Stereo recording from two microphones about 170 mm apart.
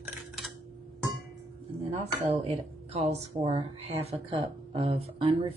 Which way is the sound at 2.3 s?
40° right (ahead or behind).